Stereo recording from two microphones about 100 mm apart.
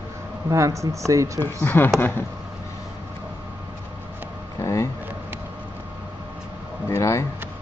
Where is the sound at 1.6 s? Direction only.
20° left (ahead or behind).